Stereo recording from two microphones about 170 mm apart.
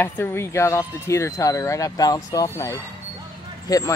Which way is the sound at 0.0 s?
15° left (ahead or behind).